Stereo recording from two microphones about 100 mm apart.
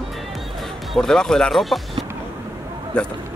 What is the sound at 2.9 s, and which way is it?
Speech, 10° left (ahead or behind).